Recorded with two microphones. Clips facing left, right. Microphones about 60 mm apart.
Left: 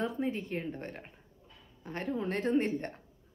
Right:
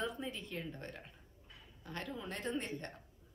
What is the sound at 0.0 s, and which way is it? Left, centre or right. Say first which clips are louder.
Speech: left 7 dB; left.